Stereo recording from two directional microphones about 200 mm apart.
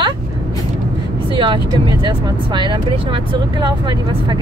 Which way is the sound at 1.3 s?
25° right (ahead or behind).